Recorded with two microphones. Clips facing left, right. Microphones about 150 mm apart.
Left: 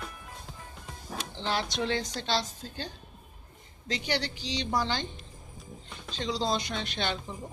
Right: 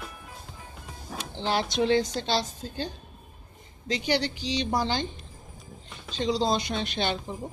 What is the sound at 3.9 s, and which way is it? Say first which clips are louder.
Speech: right 5 dB; 15° right (ahead or behind).